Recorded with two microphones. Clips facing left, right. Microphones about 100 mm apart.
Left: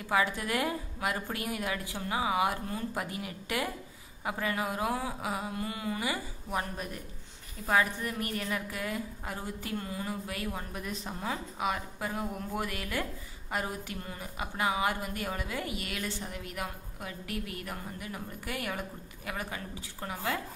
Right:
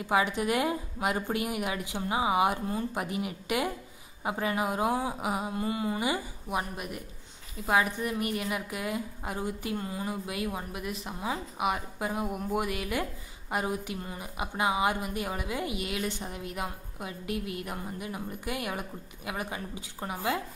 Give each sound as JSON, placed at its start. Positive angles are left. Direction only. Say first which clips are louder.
{"t": 0.0, "sound": "a woman's voice", "louder": "right 3 dB", "side_deg": -20}
{"t": 10.7, "sound": "a woman's voice", "louder": "right 2 dB", "side_deg": -5}